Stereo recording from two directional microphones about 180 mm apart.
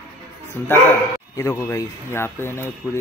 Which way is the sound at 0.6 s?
10° left (ahead or behind).